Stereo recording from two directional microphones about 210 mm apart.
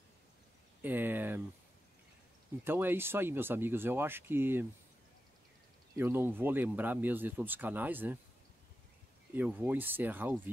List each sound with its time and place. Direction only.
0.8 s speech: 10° right (ahead or behind)
2.6 s speech: 10° right (ahead or behind)
5.9 s speech: 10° right (ahead or behind)
9.3 s speech: 10° right (ahead or behind)